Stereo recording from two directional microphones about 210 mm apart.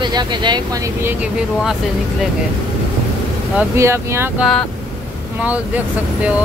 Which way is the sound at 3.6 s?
15° right (ahead or behind).